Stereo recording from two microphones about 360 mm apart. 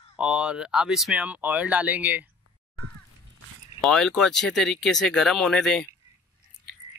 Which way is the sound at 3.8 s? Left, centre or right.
Centre.